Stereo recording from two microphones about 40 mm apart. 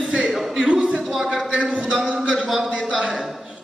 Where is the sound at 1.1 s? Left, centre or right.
Centre.